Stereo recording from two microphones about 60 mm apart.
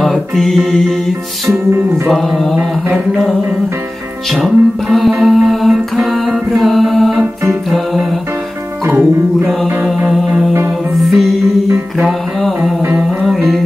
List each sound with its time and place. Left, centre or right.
0.0 s music: centre
2.0 s mantra: centre
2.5 s mantra: centre
4.3 s music: centre
8.8 s music: right
10.1 s music: centre